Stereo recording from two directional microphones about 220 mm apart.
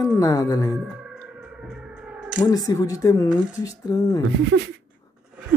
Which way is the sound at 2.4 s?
15° left (ahead or behind).